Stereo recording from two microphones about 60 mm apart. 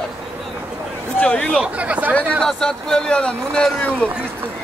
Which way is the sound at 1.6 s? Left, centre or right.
Right.